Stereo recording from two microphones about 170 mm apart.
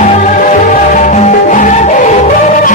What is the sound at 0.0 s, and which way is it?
Music, 45° left (ahead or behind).